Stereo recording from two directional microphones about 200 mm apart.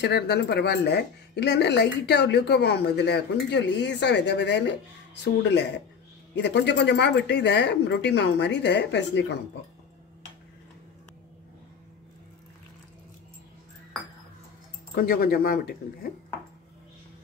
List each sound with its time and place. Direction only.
0.0 s speech: 55° left (ahead or behind)
15.0 s speech: 50° left (ahead or behind)